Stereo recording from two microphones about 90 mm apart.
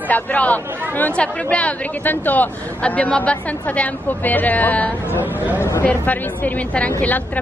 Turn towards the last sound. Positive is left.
turn(degrees=15)  # may be behind; listen again after turning